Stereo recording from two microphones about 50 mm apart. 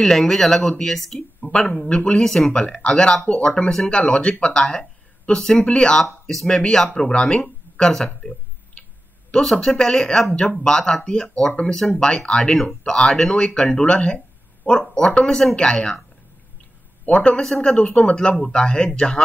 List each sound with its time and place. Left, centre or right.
0.0 s speech: centre
2.2 s speech: centre
2.5 s speech: left
7.9 s speech: centre
9.3 s speech: centre
17.0 s a man's voice: left
17.4 s speech: centre
17.7 s speech: left